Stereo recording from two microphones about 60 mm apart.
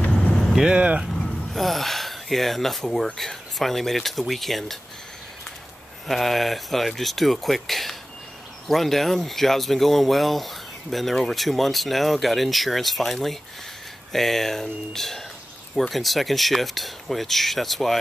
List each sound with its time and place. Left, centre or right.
0.2 s vehicle: centre
0.5 s speech: centre
0.7 s speech: right
1.1 s a sound: centre
3.2 s speech: centre
6.0 s speech: centre